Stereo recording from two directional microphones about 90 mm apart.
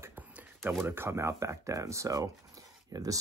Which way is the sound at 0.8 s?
25° right (ahead or behind).